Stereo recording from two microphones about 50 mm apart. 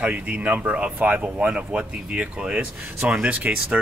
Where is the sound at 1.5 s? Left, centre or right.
Centre.